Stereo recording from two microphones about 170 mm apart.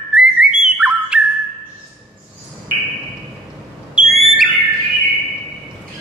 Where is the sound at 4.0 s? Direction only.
Centre (ahead or behind).